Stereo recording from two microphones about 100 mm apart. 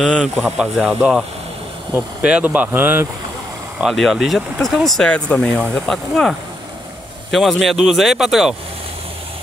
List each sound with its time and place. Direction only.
0.2 s speech: 5° right (ahead or behind)
2.2 s speech: 15° right (ahead or behind)
3.8 s speech: centre (ahead or behind)
5.1 s speech: 10° left (ahead or behind); by 8.5 s 5° right (ahead or behind)